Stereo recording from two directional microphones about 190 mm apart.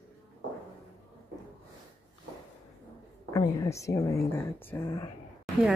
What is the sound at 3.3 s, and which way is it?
Speech, 20° left (ahead or behind).